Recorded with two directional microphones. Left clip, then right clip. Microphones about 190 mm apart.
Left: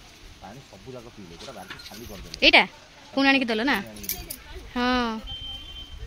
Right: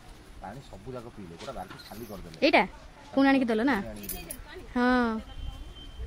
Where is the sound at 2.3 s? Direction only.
5° right (ahead or behind).